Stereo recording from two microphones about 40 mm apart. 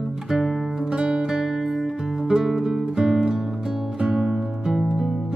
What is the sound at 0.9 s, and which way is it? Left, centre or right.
Music, centre.